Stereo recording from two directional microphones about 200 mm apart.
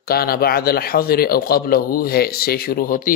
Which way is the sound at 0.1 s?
50° left (ahead or behind).